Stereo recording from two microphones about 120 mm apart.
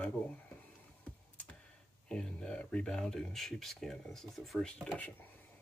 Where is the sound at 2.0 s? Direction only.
10° left (ahead or behind).